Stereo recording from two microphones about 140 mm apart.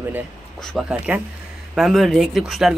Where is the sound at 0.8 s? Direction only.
Centre (ahead or behind).